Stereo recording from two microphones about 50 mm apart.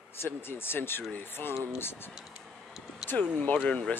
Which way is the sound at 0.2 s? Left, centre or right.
Left.